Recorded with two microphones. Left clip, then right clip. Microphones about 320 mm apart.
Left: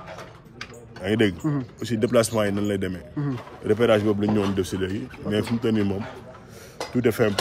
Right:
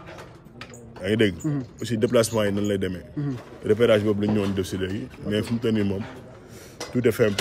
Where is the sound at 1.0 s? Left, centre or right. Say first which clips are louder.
Even; centre.